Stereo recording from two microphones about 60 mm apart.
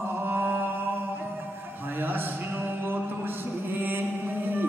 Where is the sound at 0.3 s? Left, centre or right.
Right.